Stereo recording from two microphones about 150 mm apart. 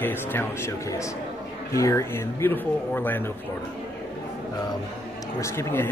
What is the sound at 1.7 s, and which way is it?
Speech, 20° left (ahead or behind).